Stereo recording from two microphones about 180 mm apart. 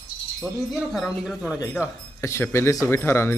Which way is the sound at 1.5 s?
20° left (ahead or behind).